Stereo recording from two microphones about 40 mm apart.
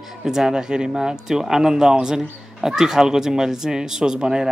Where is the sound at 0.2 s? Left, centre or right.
Centre.